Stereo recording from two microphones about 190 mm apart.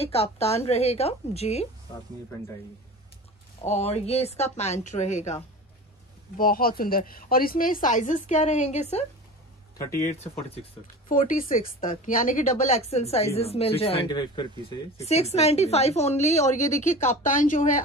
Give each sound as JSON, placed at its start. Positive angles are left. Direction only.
{"t": 0.0, "sound": "a woman's voice", "side_deg": 30}
{"t": 3.6, "sound": "a woman's voice", "side_deg": 35}
{"t": 6.3, "sound": "a woman's voice", "side_deg": 50}
{"t": 10.3, "sound": "a woman's voice", "side_deg": 30}
{"t": 11.1, "sound": "a woman's voice", "side_deg": 45}
{"t": 15.0, "sound": "a woman's voice", "side_deg": 35}